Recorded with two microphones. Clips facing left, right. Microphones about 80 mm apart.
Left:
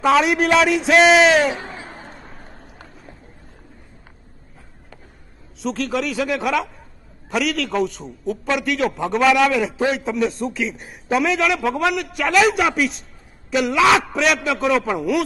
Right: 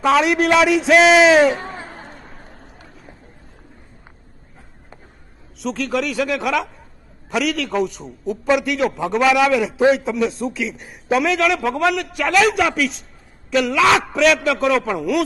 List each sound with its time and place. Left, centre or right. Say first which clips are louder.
0.0 s a man's voice: even; centre
1.5 s a sound: right 3 dB; right
5.6 s a man's voice: right 1 dB; centre